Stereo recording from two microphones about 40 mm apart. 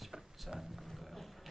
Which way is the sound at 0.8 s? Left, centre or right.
Centre.